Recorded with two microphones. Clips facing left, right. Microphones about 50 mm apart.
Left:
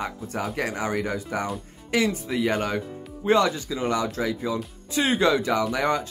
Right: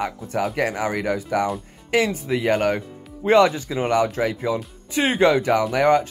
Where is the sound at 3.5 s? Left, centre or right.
Right.